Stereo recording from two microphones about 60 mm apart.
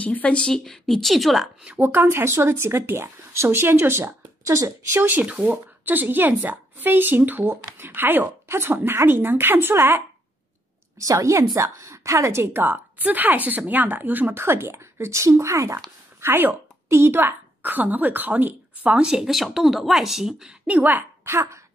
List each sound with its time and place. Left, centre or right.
0.0 s a woman's voice: left; by 1.5 s centre
1.8 s a woman's voice: right
2.0 s a woman's voice: right
4.5 s a woman's voice: right
4.9 s a woman's voice: right
5.2 s a woman's voice: right
5.5 s a woman's voice: right
11.0 s a woman's voice: right
12.6 s a woman's voice: right
14.4 s speech: right
18.9 s speech: centre
20.6 s a woman's voice: right
21.2 s speech: right